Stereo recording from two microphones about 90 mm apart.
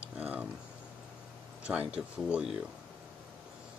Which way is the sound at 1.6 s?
15° right (ahead or behind).